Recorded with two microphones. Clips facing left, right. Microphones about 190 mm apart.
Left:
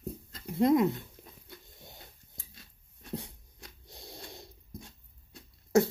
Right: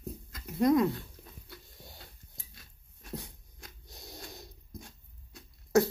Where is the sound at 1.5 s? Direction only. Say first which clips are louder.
Left 1 dB; 20° left (ahead or behind).